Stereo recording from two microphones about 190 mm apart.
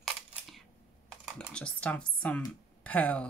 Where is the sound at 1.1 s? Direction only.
5° left (ahead or behind).